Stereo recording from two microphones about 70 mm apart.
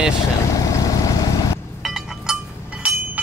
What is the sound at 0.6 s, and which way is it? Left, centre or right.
Vehicle, left.